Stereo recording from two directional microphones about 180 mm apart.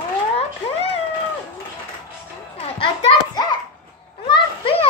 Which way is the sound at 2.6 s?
30° left (ahead or behind).